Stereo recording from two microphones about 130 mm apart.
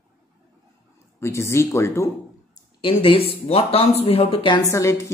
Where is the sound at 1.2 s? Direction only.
20° left (ahead or behind).